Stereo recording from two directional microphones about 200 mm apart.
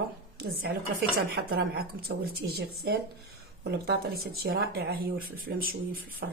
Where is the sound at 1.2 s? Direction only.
50° right (ahead or behind).